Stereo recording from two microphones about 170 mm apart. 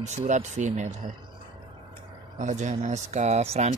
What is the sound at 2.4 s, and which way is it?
Speech, 45° right (ahead or behind).